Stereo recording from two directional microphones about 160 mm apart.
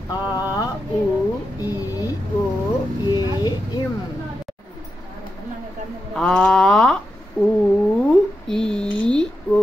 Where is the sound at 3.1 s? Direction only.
25° left (ahead or behind).